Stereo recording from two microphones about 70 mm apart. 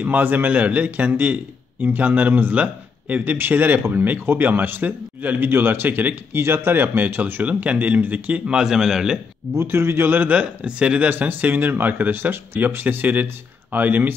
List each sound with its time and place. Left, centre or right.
0.0 s a man's voice: right; by 9.2 s centre
9.5 s a man's voice: right; by 11.1 s centre
11.1 s a man's voice: right